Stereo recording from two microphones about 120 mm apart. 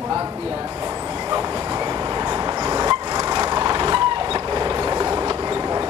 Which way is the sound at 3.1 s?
30° right (ahead or behind).